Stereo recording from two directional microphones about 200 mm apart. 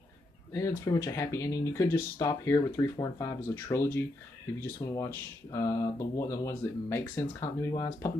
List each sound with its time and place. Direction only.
0.5 s speech: 15° left (ahead or behind)